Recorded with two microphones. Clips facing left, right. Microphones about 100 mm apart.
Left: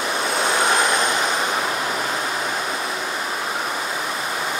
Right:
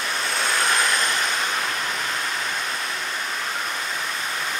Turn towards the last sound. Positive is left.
turn(degrees=15)  # may be behind; listen again after turning